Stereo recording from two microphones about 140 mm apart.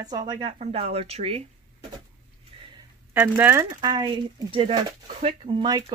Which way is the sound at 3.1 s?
10° right (ahead or behind).